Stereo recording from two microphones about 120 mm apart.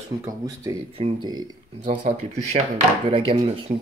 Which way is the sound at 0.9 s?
40° right (ahead or behind).